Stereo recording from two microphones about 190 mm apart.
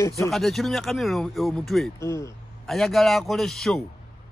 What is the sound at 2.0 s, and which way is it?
Speech, 15° left (ahead or behind).